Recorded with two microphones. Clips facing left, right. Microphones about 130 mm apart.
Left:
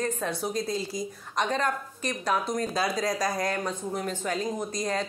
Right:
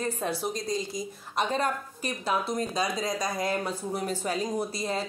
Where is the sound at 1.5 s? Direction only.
10° right (ahead or behind).